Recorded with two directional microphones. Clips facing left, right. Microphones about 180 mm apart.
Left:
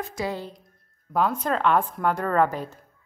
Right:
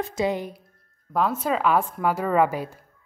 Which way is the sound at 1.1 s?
5° right (ahead or behind).